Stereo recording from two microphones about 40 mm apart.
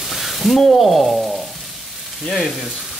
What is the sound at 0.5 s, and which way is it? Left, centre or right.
Speech, centre.